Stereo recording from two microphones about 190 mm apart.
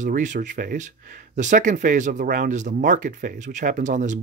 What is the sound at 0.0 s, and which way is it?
Speech, 40° right (ahead or behind).